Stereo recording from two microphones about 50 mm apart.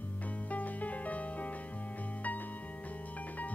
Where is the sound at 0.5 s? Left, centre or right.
Left.